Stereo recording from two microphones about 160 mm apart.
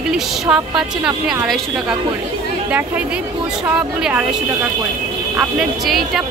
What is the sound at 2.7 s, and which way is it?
A woman's voice, 10° right (ahead or behind).